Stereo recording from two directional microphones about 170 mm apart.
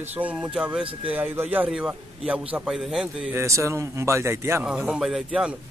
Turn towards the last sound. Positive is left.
turn(degrees=-5)  # may be behind; listen again after turning